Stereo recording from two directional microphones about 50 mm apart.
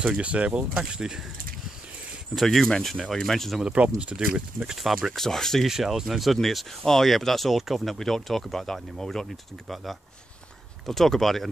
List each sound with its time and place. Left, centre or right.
0.2 s speech: right
2.3 s speech: centre
3.6 s speech: right
5.1 s speech: centre
5.7 s speech: centre